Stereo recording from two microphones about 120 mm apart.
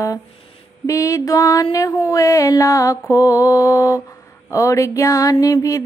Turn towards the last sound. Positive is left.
turn(degrees=25)  # may be behind; listen again after turning